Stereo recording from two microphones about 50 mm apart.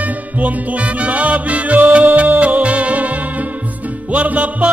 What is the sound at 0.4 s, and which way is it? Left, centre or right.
Music, right.